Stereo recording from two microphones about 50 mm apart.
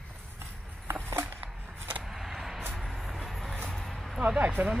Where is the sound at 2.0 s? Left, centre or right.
Centre.